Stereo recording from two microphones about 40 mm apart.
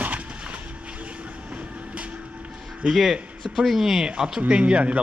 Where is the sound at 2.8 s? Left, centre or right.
Centre.